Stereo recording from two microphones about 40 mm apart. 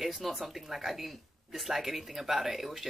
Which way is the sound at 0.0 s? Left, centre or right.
Centre.